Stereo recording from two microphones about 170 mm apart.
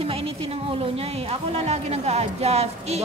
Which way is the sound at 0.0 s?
35° right (ahead or behind).